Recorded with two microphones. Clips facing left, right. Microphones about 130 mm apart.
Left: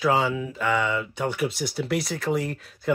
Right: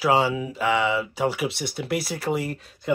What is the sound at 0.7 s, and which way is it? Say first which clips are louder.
Speech: right 2 dB; 5° right (ahead or behind).